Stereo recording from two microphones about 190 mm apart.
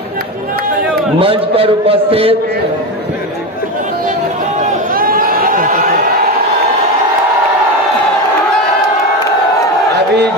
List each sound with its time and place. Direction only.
1.2 s a man's voice: 30° right (ahead or behind)
4.6 s crowd: 50° right (ahead or behind)